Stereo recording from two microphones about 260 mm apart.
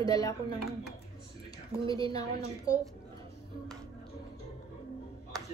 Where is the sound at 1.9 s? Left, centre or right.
Centre.